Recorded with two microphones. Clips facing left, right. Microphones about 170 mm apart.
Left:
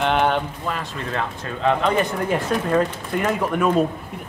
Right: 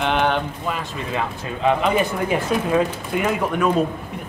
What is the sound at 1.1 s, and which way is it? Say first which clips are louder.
Speech: right 1 dB; 10° right (ahead or behind).